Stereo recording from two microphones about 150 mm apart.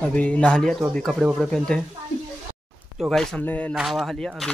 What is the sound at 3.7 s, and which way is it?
Speech, centre (ahead or behind).